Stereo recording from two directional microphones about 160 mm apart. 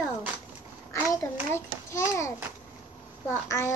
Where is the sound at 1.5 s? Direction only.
15° left (ahead or behind).